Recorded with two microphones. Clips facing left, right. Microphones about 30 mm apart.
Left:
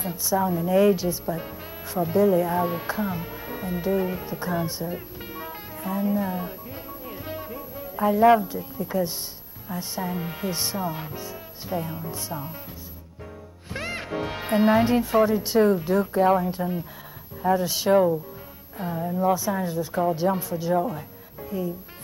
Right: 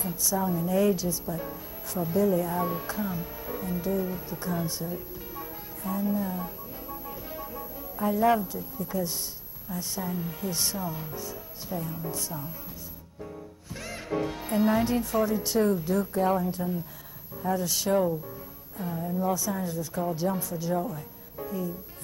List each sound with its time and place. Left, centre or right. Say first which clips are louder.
0.2 s a woman's voice: left 5 dB; left
4.3 s a woman's voice: left 4 dB; left
4.9 s music: left 3 dB; left
5.8 s music: left 4 dB; left
9.7 s a woman's voice: left 3 dB; left
10.1 s a woman's voice: left 3 dB; left